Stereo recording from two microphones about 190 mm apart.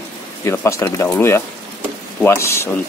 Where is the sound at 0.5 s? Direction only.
15° left (ahead or behind).